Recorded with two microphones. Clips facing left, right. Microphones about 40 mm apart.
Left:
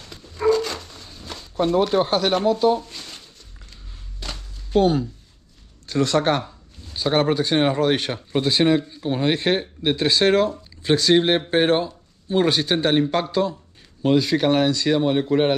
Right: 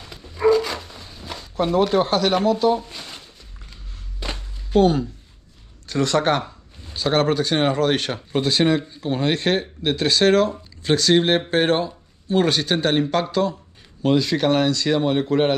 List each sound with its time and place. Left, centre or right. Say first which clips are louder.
0.0 s a sound: right 2 dB; centre
1.8 s speech: right 2 dB; centre
2.0 s speech: right 1 dB; centre
2.7 s a sound: even; centre
4.2 s walk: right 4 dB; centre
4.7 s speech: right 1 dB; right
7.5 s speech: left 1 dB; centre
8.1 s speech: even; centre
15.0 s speech: even; centre